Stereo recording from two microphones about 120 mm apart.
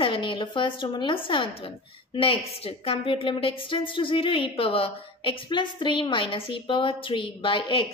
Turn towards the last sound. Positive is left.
turn(degrees=45)  # may be behind; listen again after turning